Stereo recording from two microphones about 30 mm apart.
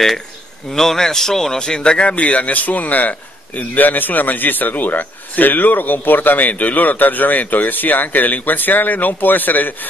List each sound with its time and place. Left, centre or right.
0.7 s a man's voice: centre
1.6 s speech: left
6.6 s speech: left